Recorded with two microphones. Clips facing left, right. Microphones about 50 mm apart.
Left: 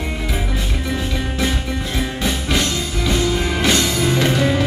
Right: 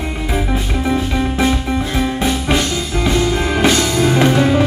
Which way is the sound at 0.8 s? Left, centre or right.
Right.